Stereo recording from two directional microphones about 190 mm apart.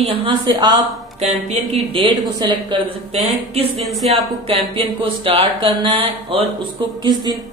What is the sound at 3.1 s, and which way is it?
Speech, 30° right (ahead or behind).